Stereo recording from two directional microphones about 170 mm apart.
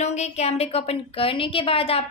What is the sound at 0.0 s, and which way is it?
A woman's voice, 40° left (ahead or behind).